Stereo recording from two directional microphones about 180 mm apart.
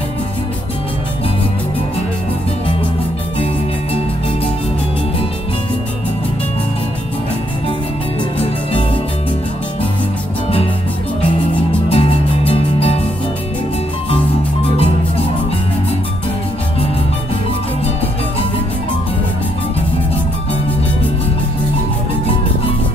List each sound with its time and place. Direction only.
11.9 s music: 30° left (ahead or behind)